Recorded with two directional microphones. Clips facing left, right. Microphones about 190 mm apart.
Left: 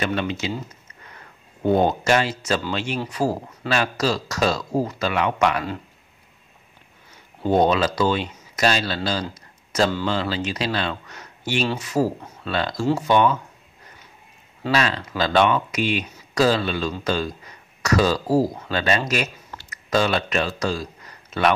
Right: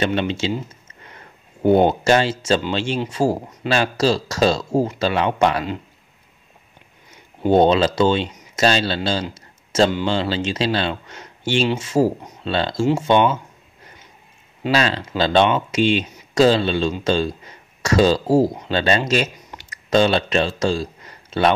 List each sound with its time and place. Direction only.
0.0 s speech: 25° right (ahead or behind)
7.4 s speech: 25° right (ahead or behind)
14.7 s speech: 30° right (ahead or behind)